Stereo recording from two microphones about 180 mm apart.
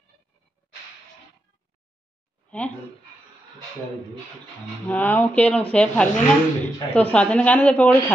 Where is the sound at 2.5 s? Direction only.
10° left (ahead or behind).